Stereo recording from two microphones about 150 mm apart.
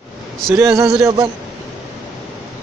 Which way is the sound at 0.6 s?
20° right (ahead or behind).